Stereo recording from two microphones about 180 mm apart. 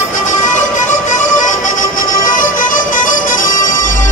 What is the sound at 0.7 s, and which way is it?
Music, 45° left (ahead or behind).